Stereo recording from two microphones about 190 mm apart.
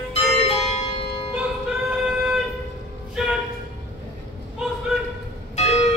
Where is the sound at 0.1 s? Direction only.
35° left (ahead or behind).